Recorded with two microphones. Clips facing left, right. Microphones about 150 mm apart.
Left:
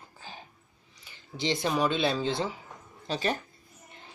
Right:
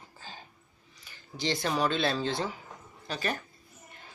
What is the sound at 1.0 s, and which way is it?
Speech, 20° left (ahead or behind).